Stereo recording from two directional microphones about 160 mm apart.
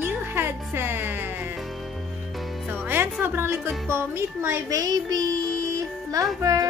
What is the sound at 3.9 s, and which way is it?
Music, 15° right (ahead or behind).